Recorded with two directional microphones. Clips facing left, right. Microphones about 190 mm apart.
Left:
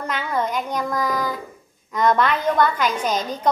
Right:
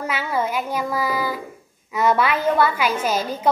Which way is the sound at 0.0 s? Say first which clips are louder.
Right 1 dB; 5° right (ahead or behind).